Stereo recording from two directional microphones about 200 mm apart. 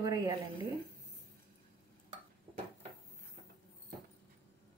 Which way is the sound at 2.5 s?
20° right (ahead or behind).